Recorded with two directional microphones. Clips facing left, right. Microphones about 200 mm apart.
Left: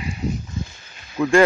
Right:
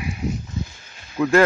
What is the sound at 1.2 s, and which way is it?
Speech, centre (ahead or behind).